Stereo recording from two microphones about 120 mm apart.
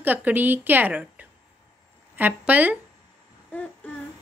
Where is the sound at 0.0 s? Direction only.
15° right (ahead or behind).